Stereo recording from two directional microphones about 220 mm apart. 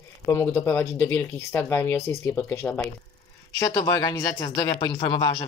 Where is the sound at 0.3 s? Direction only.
10° left (ahead or behind).